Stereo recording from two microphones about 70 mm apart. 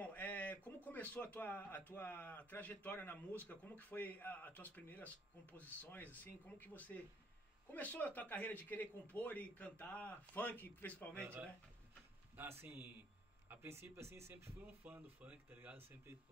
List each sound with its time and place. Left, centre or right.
0.0 s a sound: left
0.8 s speech: left
11.1 s speech: right
14.7 s speech: right